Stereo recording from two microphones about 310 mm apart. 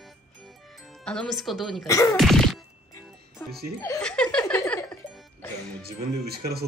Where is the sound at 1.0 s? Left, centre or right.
Centre.